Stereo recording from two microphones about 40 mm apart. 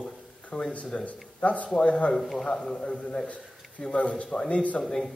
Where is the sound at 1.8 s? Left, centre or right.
Left.